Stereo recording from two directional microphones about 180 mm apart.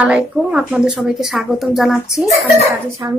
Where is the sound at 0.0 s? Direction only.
5° right (ahead or behind).